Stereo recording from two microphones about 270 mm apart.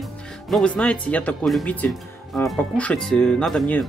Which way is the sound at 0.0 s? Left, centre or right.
Centre.